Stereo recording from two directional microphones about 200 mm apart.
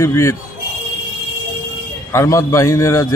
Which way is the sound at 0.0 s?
15° left (ahead or behind).